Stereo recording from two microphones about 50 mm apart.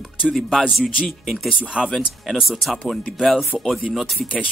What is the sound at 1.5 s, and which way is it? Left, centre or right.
Speech, centre.